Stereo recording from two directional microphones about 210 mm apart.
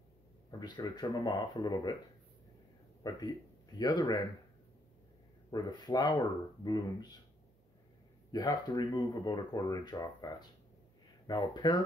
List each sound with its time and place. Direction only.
0.5 s speech: 20° left (ahead or behind)
3.0 s speech: 20° left (ahead or behind)
5.5 s speech: 20° left (ahead or behind)
8.3 s speech: 20° left (ahead or behind)